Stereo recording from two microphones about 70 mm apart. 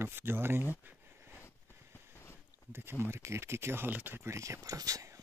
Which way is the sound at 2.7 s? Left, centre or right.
Right.